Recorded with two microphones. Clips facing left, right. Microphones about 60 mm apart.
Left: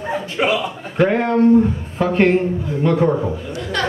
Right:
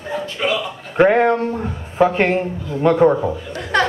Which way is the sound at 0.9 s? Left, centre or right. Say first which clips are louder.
Right 4 dB; right.